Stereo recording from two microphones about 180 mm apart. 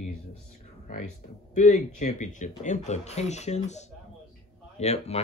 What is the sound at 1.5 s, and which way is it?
Speech, 45° left (ahead or behind).